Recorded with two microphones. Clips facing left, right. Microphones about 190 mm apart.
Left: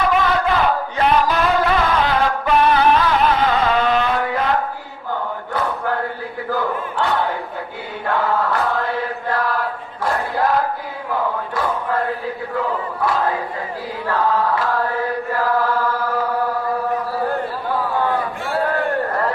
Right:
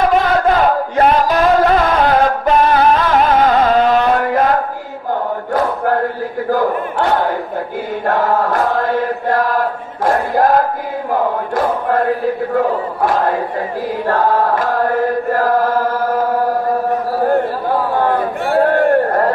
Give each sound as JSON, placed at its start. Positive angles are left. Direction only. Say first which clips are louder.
{"t": 0.1, "sound": "chant", "louder": "right 5 dB", "side_deg": -45}
{"t": 6.5, "sound": "battle cry", "louder": "right 6 dB", "side_deg": -45}
{"t": 8.1, "sound": "chant", "louder": "right 4 dB", "side_deg": -45}
{"t": 12.5, "sound": "crowd", "louder": "right 6 dB", "side_deg": -45}
{"t": 14.0, "sound": "chant", "louder": "right 4 dB", "side_deg": -45}
{"t": 17.6, "sound": "chatter", "louder": "right 5 dB", "side_deg": -40}
{"t": 18.6, "sound": "a sound", "louder": "right 8 dB", "side_deg": -45}